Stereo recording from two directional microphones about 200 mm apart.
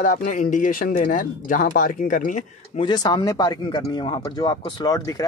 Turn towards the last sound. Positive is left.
turn(degrees=20)  # may be behind; listen again after turning